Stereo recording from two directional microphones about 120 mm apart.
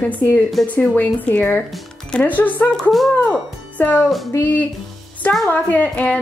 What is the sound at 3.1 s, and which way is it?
Music, 10° left (ahead or behind).